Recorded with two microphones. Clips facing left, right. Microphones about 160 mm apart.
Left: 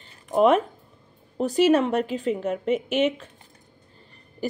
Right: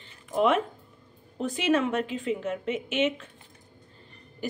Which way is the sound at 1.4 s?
40° left (ahead or behind).